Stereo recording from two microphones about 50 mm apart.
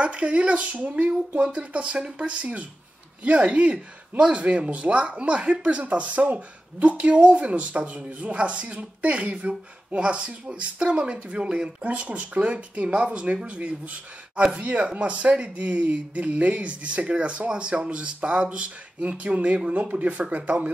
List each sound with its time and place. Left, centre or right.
0.0 s speech: right